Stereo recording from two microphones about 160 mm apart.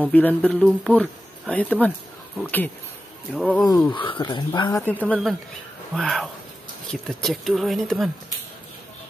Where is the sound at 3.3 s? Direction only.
Centre (ahead or behind).